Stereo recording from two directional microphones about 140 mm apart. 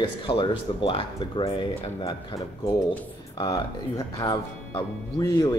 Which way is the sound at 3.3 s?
30° left (ahead or behind).